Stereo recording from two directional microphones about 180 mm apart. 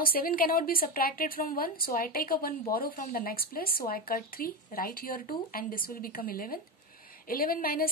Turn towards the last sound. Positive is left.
turn(degrees=55)  # may be behind; listen again after turning